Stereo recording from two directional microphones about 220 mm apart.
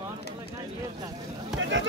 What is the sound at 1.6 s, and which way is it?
Speech, 60° right (ahead or behind).